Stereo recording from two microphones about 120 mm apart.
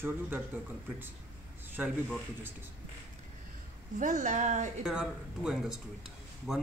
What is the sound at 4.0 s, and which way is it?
Speech, 90° right.